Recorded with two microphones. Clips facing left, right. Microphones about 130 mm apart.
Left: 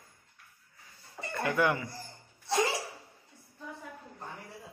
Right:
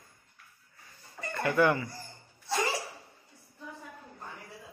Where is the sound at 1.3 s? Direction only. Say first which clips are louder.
Right 3 dB; 10° left (ahead or behind).